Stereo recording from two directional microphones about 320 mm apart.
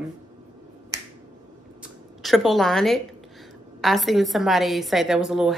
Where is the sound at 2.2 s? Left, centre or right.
Centre.